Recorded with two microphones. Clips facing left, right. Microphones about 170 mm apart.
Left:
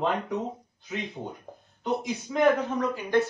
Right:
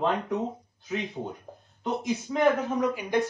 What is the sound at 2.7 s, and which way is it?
Speech, 10° right (ahead or behind).